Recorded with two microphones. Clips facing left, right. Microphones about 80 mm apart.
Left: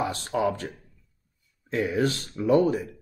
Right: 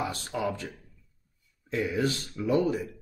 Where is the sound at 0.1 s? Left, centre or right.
Left.